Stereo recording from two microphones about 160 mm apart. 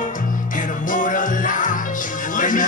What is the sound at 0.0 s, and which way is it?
Music, 55° left (ahead or behind).